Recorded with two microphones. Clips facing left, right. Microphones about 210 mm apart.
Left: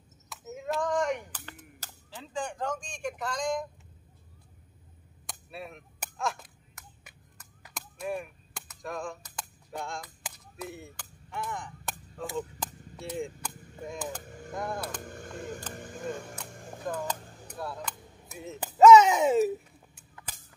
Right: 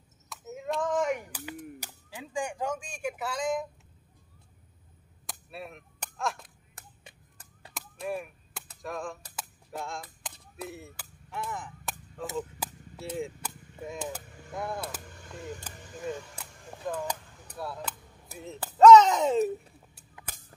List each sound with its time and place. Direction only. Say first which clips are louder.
0.3 s a sound: even; centre (ahead or behind)
5.2 s whip: even; centre (ahead or behind)
6.7 s a sound: right 1 dB; 30° right (ahead or behind)
8.0 s cap gun: even; centre (ahead or behind)
8.8 s speech: even; centre (ahead or behind)
9.3 s cap gun: even; 5° right (ahead or behind)
12.4 s a sound: even; 5° right (ahead or behind)
13.1 s chop: even; 5° right (ahead or behind)
14.0 s speech: even; 5° right (ahead or behind)
15.1 s speech: left 2 dB; 50° left (ahead or behind)
17.6 s speech: even; centre (ahead or behind)